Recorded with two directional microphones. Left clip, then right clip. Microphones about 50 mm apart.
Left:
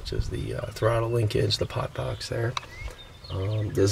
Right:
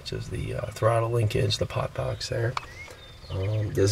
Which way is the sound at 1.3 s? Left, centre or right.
Centre.